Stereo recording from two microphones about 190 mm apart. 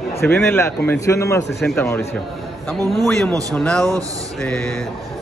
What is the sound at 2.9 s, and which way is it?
Speech, centre (ahead or behind).